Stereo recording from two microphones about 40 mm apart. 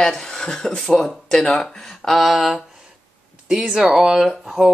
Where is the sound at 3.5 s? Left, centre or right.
Centre.